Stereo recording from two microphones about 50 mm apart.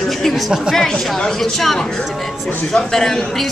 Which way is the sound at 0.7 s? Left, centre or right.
Centre.